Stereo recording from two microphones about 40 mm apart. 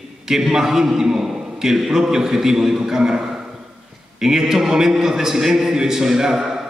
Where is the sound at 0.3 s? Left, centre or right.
Centre.